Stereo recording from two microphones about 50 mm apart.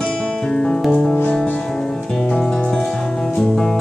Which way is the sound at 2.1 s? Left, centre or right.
Centre.